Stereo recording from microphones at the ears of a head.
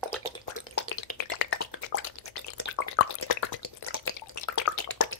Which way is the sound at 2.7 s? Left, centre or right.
Left.